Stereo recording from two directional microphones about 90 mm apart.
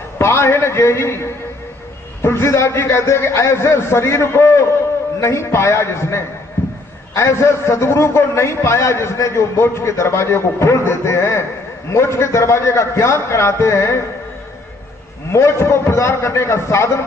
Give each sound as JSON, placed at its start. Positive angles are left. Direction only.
{"t": 0.2, "sound": "a man's voice", "side_deg": 30}
{"t": 15.3, "sound": "a man's voice", "side_deg": 30}